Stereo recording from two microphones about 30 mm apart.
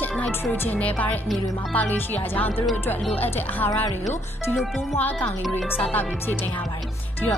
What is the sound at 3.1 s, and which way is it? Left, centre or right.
Speech, left.